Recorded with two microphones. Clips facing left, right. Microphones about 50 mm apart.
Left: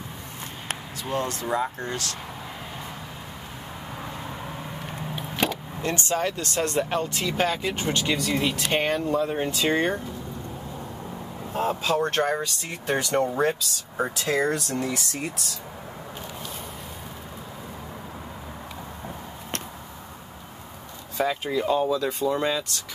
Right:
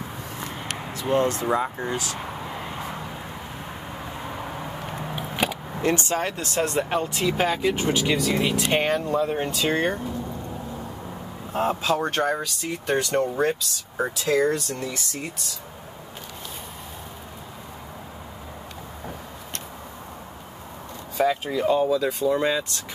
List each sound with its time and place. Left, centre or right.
0.9 s speech: right
1.5 s speech: centre
5.1 s vehicle: centre
5.8 s speech: right
6.5 s speech: centre
11.5 s speech: centre
12.0 s speech: centre
21.2 s speech: centre